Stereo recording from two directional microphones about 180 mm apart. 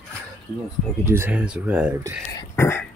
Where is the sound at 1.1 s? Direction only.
10° right (ahead or behind).